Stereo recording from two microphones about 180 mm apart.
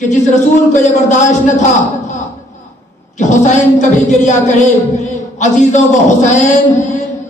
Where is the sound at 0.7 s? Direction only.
40° left (ahead or behind).